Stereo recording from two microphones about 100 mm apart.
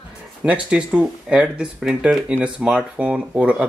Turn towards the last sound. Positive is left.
turn(degrees=-10)  # may be behind; listen again after turning